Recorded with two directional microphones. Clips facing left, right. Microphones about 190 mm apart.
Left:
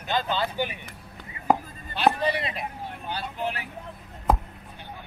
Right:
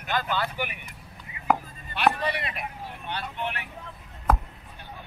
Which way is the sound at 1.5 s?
25° left (ahead or behind).